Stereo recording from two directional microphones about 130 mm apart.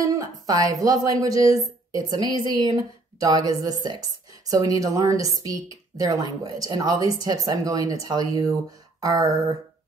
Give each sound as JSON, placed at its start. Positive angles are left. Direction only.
{"t": 0.0, "sound": "a woman's voice", "side_deg": -25}